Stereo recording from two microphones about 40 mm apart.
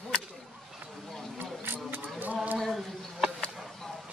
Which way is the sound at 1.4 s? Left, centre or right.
Right.